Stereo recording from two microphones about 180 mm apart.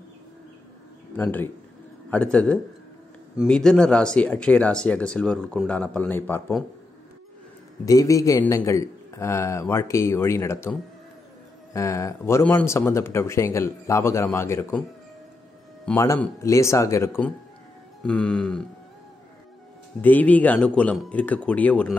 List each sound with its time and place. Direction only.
1.1 s speech: 10° left (ahead or behind)
7.8 s speech: 20° left (ahead or behind)
16.0 s speech: 15° left (ahead or behind)
20.0 s speech: 10° left (ahead or behind)